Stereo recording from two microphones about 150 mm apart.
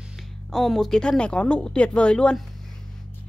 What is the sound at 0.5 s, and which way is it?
A woman's voice, centre (ahead or behind).